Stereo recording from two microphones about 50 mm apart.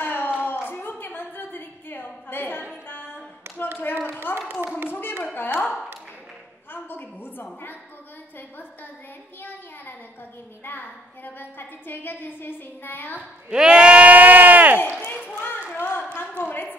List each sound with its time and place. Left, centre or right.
0.0 s a sound: left
2.7 s music: left
3.4 s clapping: right
4.4 s speech: right
4.8 s a sound: left
5.2 s speech: left
6.7 s a woman's voice: left
10.6 s a woman's voice: left
13.5 s speech: centre; by 14.8 s right
15.0 s a sound: left
16.2 s speech: left